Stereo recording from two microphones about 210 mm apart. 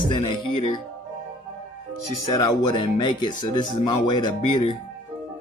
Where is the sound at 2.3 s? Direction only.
20° left (ahead or behind).